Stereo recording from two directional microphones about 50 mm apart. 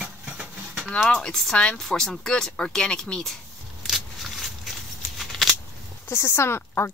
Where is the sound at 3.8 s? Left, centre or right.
Centre.